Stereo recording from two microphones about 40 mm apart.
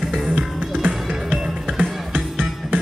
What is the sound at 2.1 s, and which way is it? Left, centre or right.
Music, right.